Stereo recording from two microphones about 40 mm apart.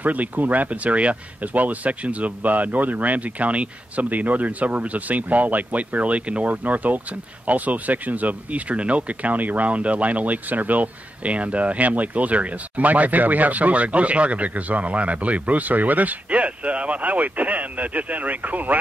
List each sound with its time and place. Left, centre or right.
0.0 s speech: right
9.3 s speech: right